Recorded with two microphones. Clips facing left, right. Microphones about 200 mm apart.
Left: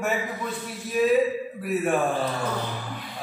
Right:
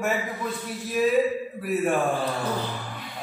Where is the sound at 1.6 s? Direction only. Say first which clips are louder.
Even; centre (ahead or behind).